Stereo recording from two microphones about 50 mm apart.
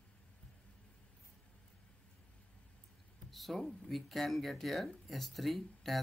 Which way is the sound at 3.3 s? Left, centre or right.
Centre.